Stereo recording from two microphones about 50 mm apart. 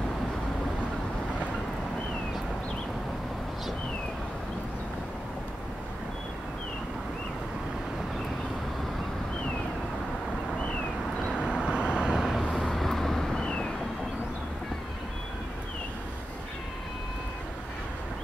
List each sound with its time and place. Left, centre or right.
10.6 s a sound: left
11.3 s vehicle: centre
12.2 s vehicle: centre